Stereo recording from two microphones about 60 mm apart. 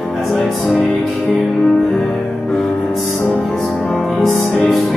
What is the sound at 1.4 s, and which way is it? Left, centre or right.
Music, centre.